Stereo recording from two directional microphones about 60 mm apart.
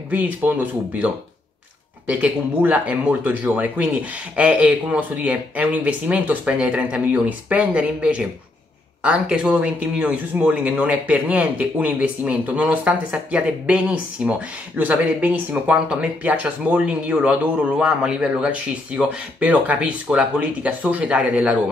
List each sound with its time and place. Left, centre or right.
0.1 s a man's voice: right